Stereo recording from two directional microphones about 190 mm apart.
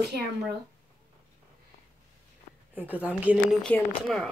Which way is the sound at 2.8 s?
10° right (ahead or behind).